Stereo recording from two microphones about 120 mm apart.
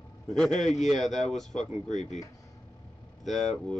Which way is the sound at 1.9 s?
80° left.